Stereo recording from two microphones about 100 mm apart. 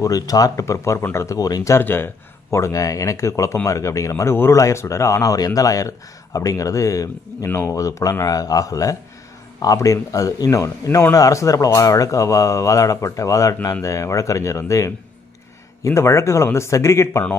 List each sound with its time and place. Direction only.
0.0 s speech: 40° left (ahead or behind); by 2.0 s 20° left (ahead or behind)
2.5 s speech: 35° left (ahead or behind)